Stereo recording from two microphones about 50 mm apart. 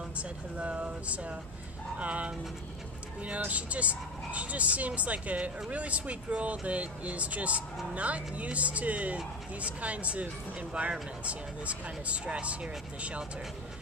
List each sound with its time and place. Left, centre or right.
0.2 s speech: right
3.3 s speech: right